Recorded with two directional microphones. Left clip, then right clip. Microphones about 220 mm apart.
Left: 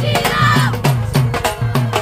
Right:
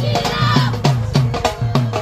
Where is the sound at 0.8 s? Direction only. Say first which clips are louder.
Left 1 dB; 10° left (ahead or behind).